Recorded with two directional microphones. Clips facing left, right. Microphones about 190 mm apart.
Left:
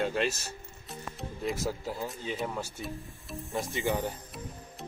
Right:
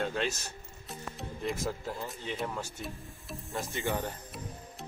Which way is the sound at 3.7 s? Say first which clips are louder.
Left 2 dB; 15° left (ahead or behind).